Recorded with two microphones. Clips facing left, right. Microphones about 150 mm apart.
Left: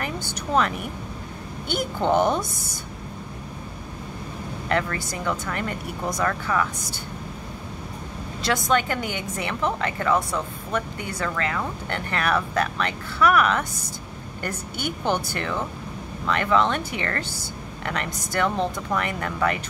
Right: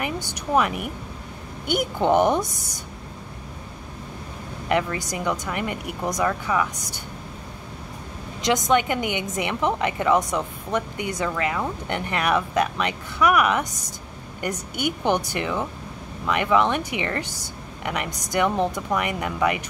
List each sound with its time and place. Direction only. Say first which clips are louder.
0.0 s a woman's voice: right 1 dB; 15° right (ahead or behind)
4.6 s a woman's voice: right 2 dB; 15° right (ahead or behind)
8.4 s a woman's voice: right 2 dB; 15° right (ahead or behind)